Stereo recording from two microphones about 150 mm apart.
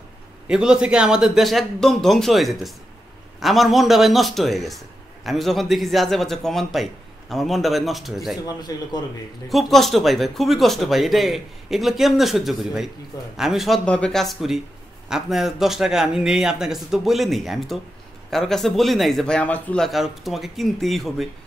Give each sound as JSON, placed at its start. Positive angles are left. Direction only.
{"t": 0.5, "sound": "speech", "side_deg": -5}
{"t": 8.5, "sound": "a man's voice", "side_deg": 25}
{"t": 9.5, "sound": "speech", "side_deg": 0}